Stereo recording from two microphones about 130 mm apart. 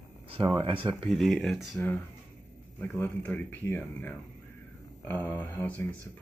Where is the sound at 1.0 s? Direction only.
Centre (ahead or behind).